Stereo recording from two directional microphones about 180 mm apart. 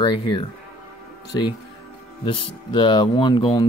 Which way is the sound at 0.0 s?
25° left (ahead or behind).